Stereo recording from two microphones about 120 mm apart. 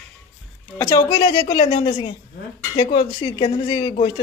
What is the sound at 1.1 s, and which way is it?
Speech, 35° left (ahead or behind).